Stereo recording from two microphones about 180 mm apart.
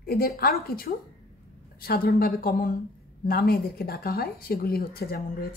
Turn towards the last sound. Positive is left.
turn(degrees=55)  # may be behind; listen again after turning